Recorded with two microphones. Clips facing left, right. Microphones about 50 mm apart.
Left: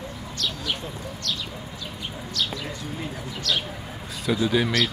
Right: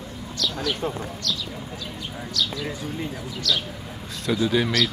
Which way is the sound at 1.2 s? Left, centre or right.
Left.